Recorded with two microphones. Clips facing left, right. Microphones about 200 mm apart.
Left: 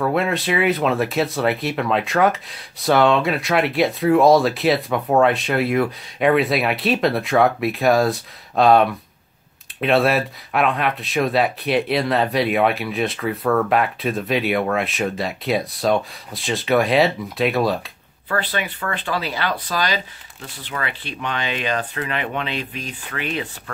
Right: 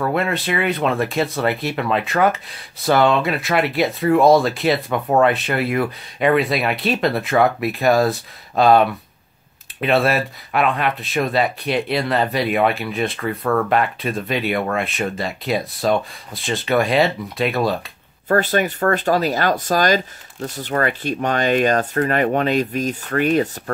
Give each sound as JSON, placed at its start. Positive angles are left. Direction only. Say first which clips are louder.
{"t": 0.0, "sound": "speech", "louder": "even", "side_deg": 0}
{"t": 18.3, "sound": "speech", "louder": "right 7 dB", "side_deg": -45}